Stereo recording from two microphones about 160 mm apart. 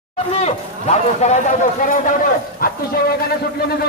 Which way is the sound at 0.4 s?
40° left (ahead or behind).